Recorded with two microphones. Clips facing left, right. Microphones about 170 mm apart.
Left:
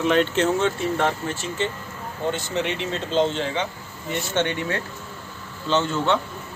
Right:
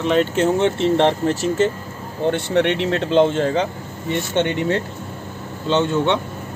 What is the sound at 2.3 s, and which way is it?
Speech, 60° right (ahead or behind).